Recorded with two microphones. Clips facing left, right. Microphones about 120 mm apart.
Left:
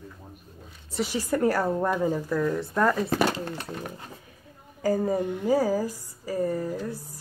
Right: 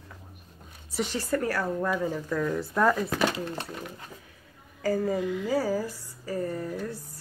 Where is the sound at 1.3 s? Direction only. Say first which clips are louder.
Left 4 dB; 25° left (ahead or behind).